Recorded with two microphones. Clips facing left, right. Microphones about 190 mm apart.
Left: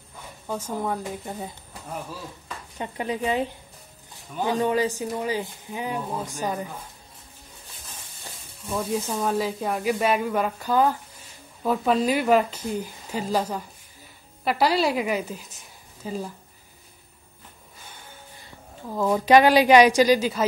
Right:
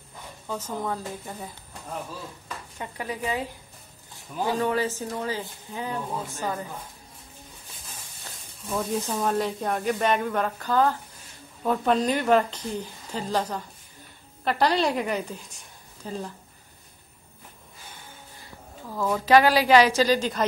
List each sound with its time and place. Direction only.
0.5 s speech: 10° left (ahead or behind)
2.8 s speech: 20° left (ahead or behind)
4.5 s speech: 15° left (ahead or behind)
8.6 s a woman's voice: 10° left (ahead or behind)
18.9 s speech: 20° left (ahead or behind)